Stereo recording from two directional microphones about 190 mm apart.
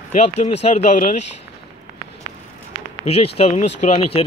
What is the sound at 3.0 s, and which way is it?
Speech, 35° left (ahead or behind).